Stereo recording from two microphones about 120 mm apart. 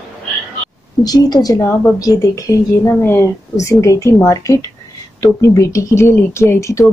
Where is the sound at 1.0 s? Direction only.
35° left (ahead or behind).